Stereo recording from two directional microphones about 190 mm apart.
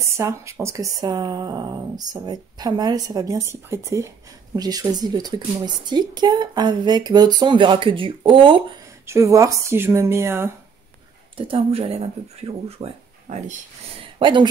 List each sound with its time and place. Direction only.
0.2 s a woman's voice: 15° right (ahead or behind)
9.0 s speech: 15° right (ahead or behind)
11.3 s a woman's voice: 30° right (ahead or behind)